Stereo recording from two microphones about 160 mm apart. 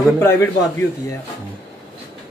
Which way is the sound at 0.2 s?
15° left (ahead or behind).